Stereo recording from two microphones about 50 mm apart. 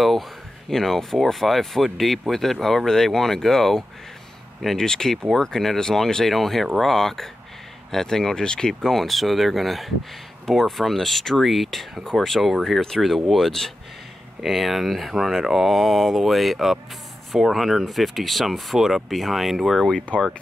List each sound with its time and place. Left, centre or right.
0.7 s speech: centre
20.1 s speech: centre